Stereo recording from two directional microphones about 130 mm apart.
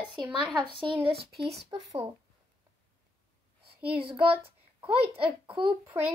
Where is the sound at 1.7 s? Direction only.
30° right (ahead or behind).